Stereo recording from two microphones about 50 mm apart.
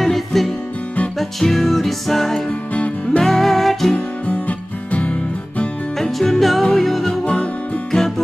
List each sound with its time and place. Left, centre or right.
0.0 s music: centre
2.7 s music: left
3.2 s music: centre
3.9 s music: left
5.9 s music: centre
7.1 s music: left